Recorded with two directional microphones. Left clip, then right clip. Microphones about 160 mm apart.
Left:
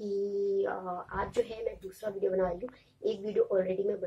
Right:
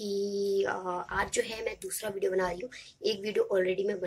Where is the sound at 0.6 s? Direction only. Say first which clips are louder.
Right 2 dB; 15° right (ahead or behind).